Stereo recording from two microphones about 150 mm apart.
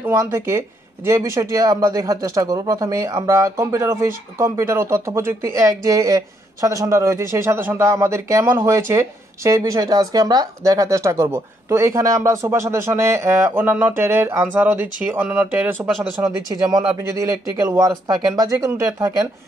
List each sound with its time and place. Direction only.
0.0 s speech: 20° right (ahead or behind)
16.2 s speech: 25° right (ahead or behind)